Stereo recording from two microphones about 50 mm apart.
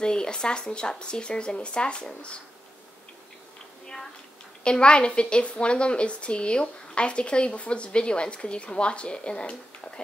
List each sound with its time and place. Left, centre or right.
0.0 s speech: centre
4.6 s a woman's voice: centre